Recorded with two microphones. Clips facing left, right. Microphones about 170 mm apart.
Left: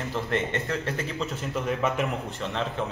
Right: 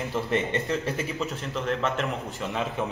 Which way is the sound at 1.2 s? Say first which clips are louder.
Even; 5° left (ahead or behind).